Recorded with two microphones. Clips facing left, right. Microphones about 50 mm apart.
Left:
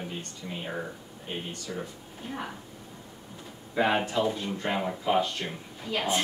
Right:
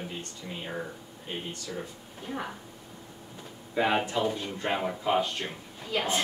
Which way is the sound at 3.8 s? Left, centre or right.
Centre.